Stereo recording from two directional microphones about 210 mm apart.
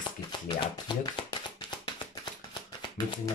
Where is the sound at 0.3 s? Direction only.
20° left (ahead or behind).